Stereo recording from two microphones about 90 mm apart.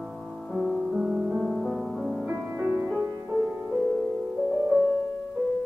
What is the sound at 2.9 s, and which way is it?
Music, 30° right (ahead or behind).